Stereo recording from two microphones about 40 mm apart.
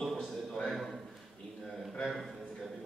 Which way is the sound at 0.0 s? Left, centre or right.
Centre.